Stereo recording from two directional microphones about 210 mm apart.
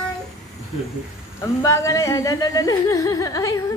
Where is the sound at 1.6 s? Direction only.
15° left (ahead or behind).